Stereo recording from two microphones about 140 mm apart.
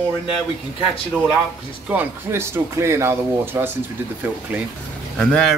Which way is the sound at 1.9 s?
15° right (ahead or behind).